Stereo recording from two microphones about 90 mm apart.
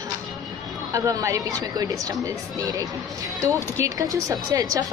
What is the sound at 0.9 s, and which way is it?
Speech, 40° right (ahead or behind).